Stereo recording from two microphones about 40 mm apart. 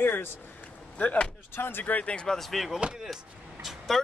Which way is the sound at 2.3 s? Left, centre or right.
Centre.